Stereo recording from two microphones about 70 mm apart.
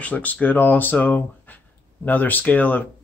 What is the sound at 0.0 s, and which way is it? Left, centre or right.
Speech, left.